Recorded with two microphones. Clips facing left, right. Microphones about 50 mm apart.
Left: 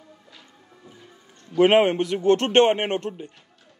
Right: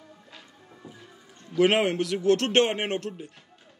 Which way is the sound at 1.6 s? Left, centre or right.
Centre.